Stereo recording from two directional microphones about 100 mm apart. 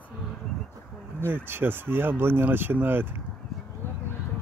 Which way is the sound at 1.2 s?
20° right (ahead or behind).